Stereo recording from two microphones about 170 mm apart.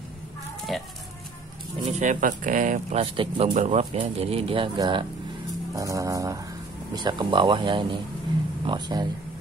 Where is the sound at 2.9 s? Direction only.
30° right (ahead or behind).